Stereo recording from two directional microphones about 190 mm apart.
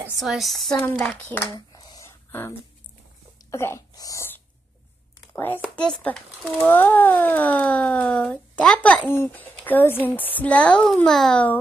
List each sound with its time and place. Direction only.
0.2 s speech: centre (ahead or behind)
1.7 s a sound: 20° left (ahead or behind)
3.4 s a woman's voice: 15° left (ahead or behind)